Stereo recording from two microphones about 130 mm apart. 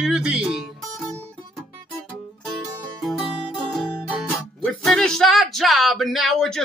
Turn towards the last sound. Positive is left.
turn(degrees=5)  # may be behind; listen again after turning